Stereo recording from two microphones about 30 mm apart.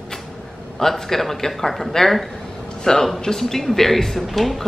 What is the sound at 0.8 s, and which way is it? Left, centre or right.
Speech, centre.